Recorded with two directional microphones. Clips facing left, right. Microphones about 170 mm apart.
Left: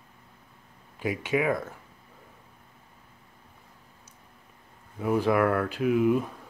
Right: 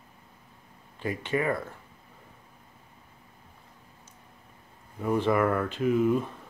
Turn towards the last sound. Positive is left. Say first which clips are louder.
# left 1 dB
turn(degrees=5)  # may be behind; listen again after turning